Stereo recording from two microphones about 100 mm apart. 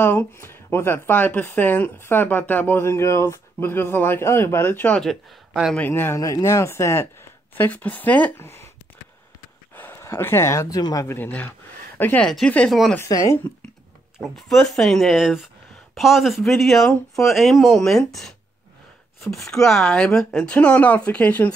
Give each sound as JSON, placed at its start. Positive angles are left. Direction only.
{"t": 0.0, "sound": "speech", "side_deg": 20}
{"t": 5.5, "sound": "speech", "side_deg": -5}
{"t": 5.8, "sound": "speech", "side_deg": 20}
{"t": 6.1, "sound": "speech", "side_deg": 35}
{"t": 7.5, "sound": "speech", "side_deg": 15}
{"t": 9.8, "sound": "speech", "side_deg": 25}
{"t": 11.1, "sound": "speech", "side_deg": 20}
{"t": 13.1, "sound": "speech", "side_deg": 30}
{"t": 14.1, "sound": "speech", "side_deg": 0}